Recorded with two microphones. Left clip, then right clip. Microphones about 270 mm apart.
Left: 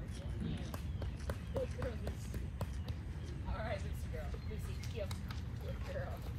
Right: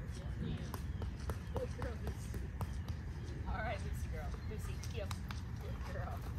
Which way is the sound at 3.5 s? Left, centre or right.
Right.